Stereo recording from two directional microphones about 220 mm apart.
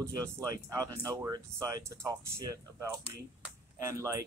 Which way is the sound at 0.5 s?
15° right (ahead or behind).